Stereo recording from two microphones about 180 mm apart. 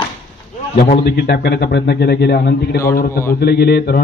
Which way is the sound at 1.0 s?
60° left (ahead or behind).